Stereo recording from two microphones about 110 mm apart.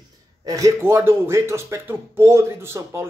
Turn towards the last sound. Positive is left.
turn(degrees=-20)  # may be behind; listen again after turning